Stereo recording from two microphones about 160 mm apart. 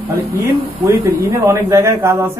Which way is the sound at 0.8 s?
15° right (ahead or behind).